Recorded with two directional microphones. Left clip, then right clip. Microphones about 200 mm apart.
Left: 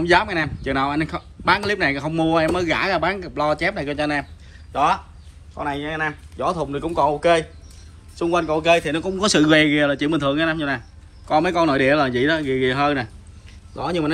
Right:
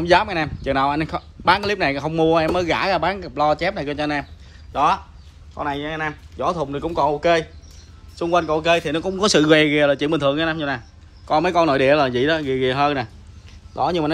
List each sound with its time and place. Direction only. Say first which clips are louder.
0.0 s speech: right 1 dB; 15° right (ahead or behind); by 7.4 s 5° left (ahead or behind)
8.2 s speech: right 1 dB; 10° right (ahead or behind)